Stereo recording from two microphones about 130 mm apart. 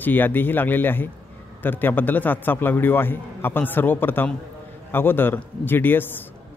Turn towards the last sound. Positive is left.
turn(degrees=15)  # may be behind; listen again after turning